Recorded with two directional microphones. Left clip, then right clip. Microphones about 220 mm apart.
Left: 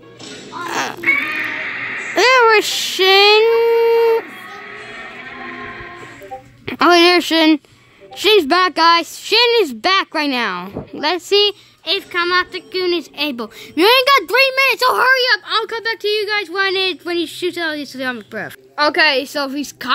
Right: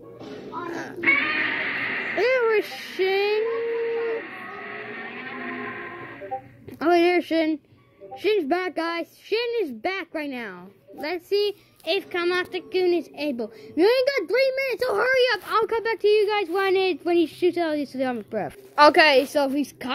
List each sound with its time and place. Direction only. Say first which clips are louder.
0.7 s crow: left 16 dB; 25° left (ahead or behind)
1.0 s a sound: left 2 dB; 15° right (ahead or behind)
2.1 s speech: left 11 dB; 25° left (ahead or behind)
4.6 s music: left 3 dB; 20° right (ahead or behind)
6.8 s a sound: left 9 dB; 25° left (ahead or behind)
8.2 s speech: left 11 dB; 25° left (ahead or behind)
12.8 s a woman's voice: left 6 dB; 25° left (ahead or behind)